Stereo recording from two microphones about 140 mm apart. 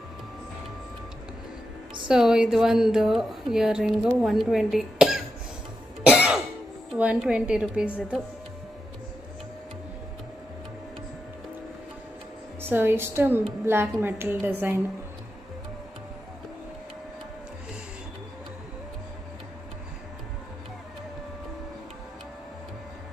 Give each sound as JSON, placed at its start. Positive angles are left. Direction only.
{"t": 2.0, "sound": "a woman's voice", "side_deg": -5}
{"t": 6.0, "sound": "cough", "side_deg": -10}
{"t": 7.0, "sound": "a woman's voice", "side_deg": -10}
{"t": 12.6, "sound": "a woman's voice", "side_deg": -15}